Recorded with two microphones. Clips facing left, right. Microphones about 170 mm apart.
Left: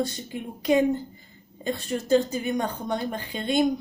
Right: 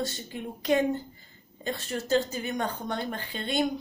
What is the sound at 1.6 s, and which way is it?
Speech, 15° left (ahead or behind).